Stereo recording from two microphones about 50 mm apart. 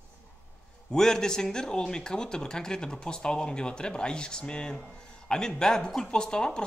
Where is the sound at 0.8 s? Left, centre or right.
Centre.